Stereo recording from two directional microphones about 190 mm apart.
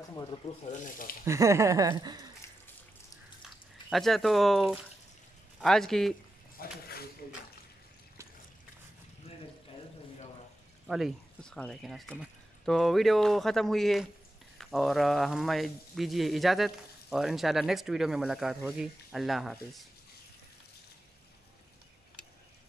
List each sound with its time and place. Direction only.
0.7 s speech: 45° left (ahead or behind)
1.2 s speech: 15° right (ahead or behind)
3.4 s speech: centre (ahead or behind)
6.6 s speech: 50° left (ahead or behind)
10.9 s speech: centre (ahead or behind)